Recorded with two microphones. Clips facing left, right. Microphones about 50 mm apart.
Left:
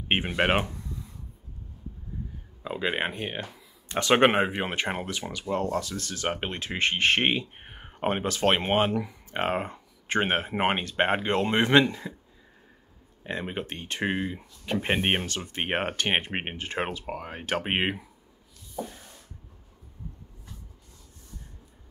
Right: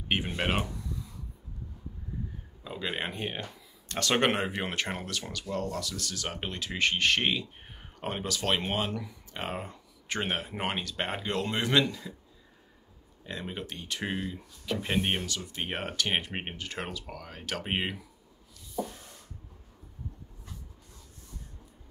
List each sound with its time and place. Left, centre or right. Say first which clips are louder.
0.1 s speech: left 5 dB; left
2.6 s speech: left 6 dB; left
3.1 s speech: left 2 dB; centre
3.9 s speech: left 6 dB; left
13.2 s speech: left 5 dB; left